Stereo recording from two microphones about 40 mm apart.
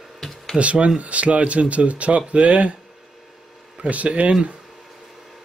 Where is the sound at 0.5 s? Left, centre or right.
Right.